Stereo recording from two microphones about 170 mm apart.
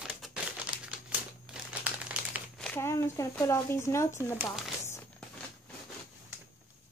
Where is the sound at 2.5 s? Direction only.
5° left (ahead or behind).